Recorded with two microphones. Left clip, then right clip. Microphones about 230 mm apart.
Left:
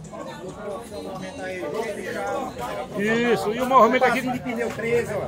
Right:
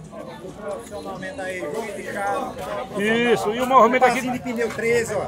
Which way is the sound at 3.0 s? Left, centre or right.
Centre.